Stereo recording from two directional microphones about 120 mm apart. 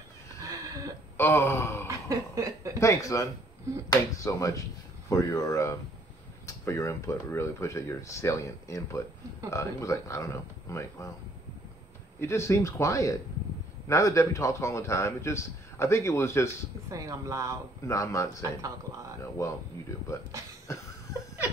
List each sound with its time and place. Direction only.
0.5 s a sound: 30° right (ahead or behind)
1.1 s gasp: 20° left (ahead or behind)
1.9 s a sound: 30° right (ahead or behind)
2.8 s speech: 25° left (ahead or behind)
12.2 s speech: 20° left (ahead or behind)
16.9 s speech: 30° right (ahead or behind)
17.8 s speech: 25° left (ahead or behind)
19.4 s speech: 25° left (ahead or behind)
20.7 s cough: 25° left (ahead or behind)